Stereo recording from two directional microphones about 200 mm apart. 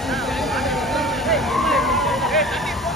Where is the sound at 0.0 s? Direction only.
Centre (ahead or behind).